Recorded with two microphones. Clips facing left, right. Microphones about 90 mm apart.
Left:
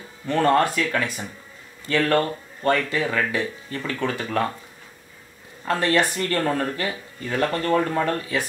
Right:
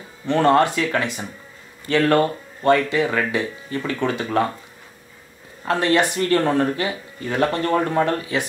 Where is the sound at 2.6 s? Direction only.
25° right (ahead or behind).